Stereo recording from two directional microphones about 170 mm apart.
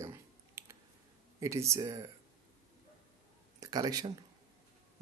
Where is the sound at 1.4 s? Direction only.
15° right (ahead or behind).